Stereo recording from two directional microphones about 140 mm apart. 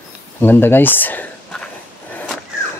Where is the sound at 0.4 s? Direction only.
15° left (ahead or behind).